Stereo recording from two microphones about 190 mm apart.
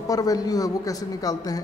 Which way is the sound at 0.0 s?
20° left (ahead or behind).